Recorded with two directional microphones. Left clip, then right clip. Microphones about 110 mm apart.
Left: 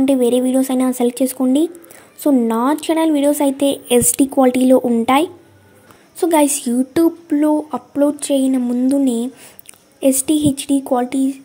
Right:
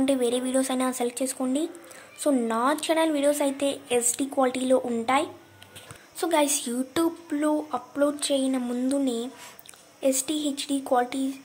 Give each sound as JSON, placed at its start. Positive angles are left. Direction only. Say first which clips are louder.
{"t": 0.0, "sound": "speech", "louder": "left 10 dB", "side_deg": 35}
{"t": 2.4, "sound": "speech", "louder": "left 7 dB", "side_deg": 40}
{"t": 3.9, "sound": "speech", "louder": "left 13 dB", "side_deg": 65}
{"t": 4.4, "sound": "speech", "louder": "left 10 dB", "side_deg": 50}